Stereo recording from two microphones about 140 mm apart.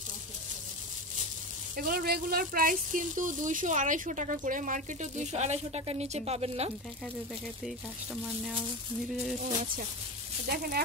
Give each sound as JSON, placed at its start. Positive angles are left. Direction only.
{"t": 1.8, "sound": "speech", "side_deg": -90}
{"t": 7.6, "sound": "speech", "side_deg": 0}
{"t": 9.4, "sound": "speech", "side_deg": -65}